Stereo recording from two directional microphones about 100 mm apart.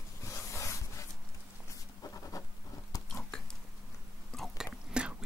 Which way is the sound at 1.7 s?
35° left (ahead or behind).